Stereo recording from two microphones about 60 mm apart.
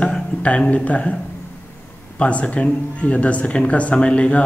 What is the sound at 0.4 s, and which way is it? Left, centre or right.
Speech, left.